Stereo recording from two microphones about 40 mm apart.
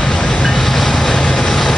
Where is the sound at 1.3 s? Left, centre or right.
Centre.